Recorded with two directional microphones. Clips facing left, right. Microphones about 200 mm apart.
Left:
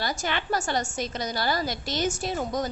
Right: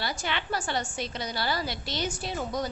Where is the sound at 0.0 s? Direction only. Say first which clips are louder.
Left 3 dB; 45° left (ahead or behind).